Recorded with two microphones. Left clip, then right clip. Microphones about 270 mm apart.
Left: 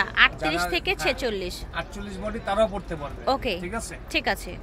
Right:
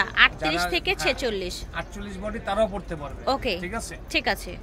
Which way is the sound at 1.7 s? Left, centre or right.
Centre.